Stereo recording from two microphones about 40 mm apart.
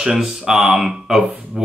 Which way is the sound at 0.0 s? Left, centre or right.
Centre.